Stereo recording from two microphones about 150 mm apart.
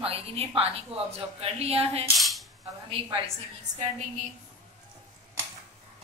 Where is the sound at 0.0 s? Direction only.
40° right (ahead or behind).